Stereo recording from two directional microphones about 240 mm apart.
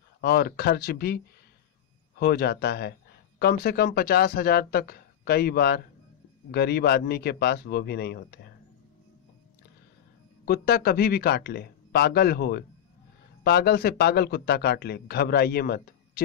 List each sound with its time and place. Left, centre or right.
0.2 s a man's voice: left
10.4 s a man's voice: left